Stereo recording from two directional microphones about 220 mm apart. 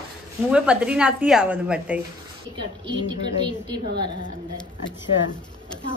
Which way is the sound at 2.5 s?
20° right (ahead or behind).